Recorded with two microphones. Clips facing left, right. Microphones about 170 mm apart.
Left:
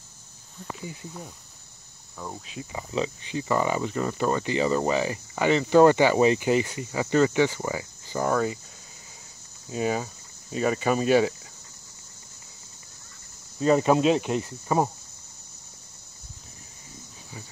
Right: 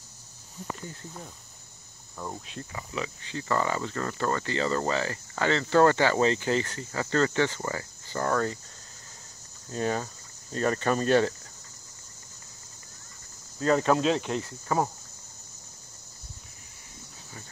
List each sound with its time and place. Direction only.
0.7 s speech: 10° left (ahead or behind)
2.7 s speech: 25° left (ahead or behind)
9.7 s speech: 10° left (ahead or behind)
13.6 s speech: 15° left (ahead or behind)